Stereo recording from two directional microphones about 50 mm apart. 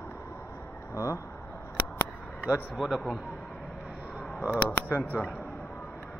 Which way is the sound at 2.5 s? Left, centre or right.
Right.